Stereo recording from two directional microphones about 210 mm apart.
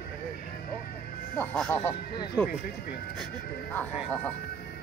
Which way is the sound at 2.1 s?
20° left (ahead or behind).